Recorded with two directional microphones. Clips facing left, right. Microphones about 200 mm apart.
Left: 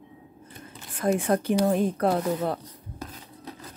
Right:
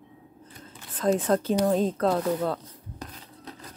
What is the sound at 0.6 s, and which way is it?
Whispering, 10° left (ahead or behind).